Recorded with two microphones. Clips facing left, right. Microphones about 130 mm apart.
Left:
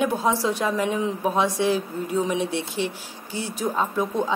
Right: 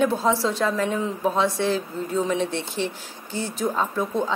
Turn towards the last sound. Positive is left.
turn(degrees=15)  # may be behind; listen again after turning